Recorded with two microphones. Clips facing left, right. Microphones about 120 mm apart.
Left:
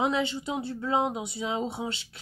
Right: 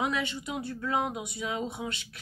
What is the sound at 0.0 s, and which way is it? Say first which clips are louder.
Speech: left 4 dB; 30° left (ahead or behind).